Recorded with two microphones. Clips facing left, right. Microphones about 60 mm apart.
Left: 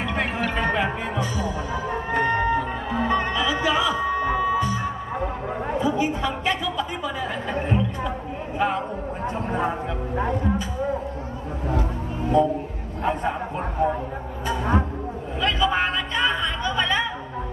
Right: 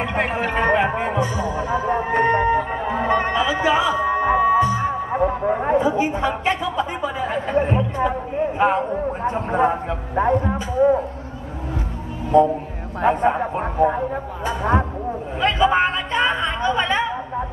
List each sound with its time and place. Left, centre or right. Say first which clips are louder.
0.0 s music: right 3 dB; right
8.5 s speech: right 4 dB; right
12.3 s a man's voice: right 5 dB; right
15.4 s a sound: right 5 dB; right